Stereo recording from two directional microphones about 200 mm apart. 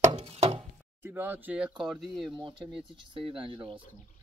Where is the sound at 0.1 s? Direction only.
30° right (ahead or behind).